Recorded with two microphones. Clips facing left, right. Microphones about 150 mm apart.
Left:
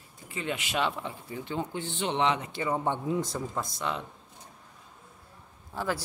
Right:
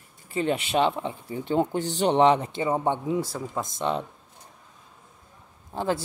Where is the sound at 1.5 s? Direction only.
40° right (ahead or behind).